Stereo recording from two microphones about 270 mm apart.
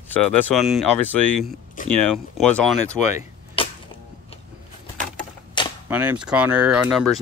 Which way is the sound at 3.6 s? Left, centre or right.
Centre.